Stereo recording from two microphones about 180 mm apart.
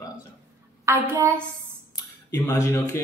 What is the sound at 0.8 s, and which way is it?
Speech, 15° right (ahead or behind).